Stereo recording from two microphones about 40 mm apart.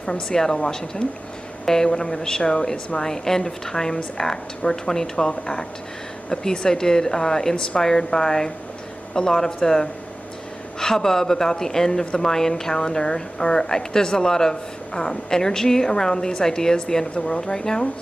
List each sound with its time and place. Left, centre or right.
0.0 s speech: centre